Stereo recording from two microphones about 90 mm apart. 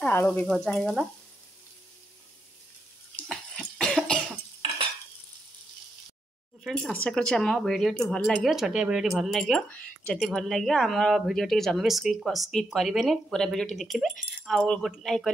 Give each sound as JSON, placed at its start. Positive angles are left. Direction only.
{"t": 0.0, "sound": "frying", "side_deg": 25}
{"t": 0.7, "sound": "speech", "side_deg": 5}
{"t": 3.3, "sound": "cough", "side_deg": 5}
{"t": 6.6, "sound": "speech", "side_deg": 0}
{"t": 6.9, "sound": "speech", "side_deg": 10}